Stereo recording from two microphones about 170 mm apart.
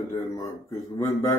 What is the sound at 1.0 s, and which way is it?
Mantra, 15° left (ahead or behind).